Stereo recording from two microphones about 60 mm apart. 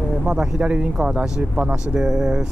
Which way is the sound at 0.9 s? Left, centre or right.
Centre.